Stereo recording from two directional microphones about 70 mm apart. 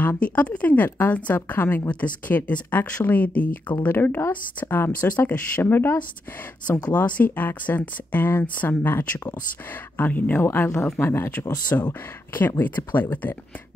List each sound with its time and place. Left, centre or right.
0.0 s speech: left